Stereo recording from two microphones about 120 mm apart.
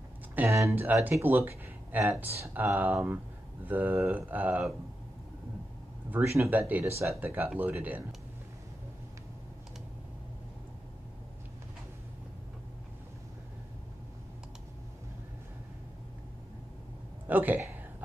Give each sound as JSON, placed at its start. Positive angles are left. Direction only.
{"t": 0.4, "sound": "speech", "side_deg": -25}
{"t": 6.0, "sound": "speech", "side_deg": -20}
{"t": 17.3, "sound": "speech", "side_deg": -15}